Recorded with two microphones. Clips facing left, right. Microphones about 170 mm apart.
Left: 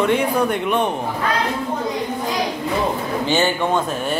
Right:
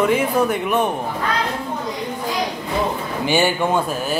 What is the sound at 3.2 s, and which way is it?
Speech, 10° right (ahead or behind).